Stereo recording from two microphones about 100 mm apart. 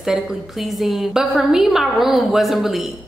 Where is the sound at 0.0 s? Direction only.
5° right (ahead or behind).